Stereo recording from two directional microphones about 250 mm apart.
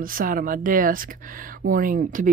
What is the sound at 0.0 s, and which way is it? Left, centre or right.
Speech, right.